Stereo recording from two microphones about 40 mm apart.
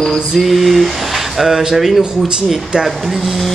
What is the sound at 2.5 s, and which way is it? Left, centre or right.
Speech, centre.